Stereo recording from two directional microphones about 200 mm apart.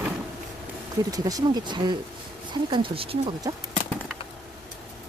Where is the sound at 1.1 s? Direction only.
20° right (ahead or behind).